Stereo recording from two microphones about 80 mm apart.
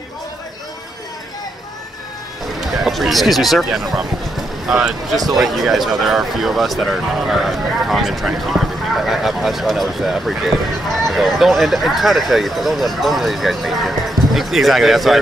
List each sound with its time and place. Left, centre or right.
2.6 s speech: centre